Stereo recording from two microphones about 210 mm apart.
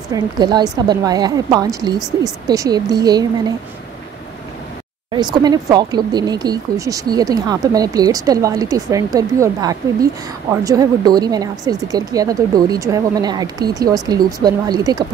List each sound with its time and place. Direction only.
0.1 s a woman's voice: 20° right (ahead or behind)
5.1 s speech: 20° right (ahead or behind)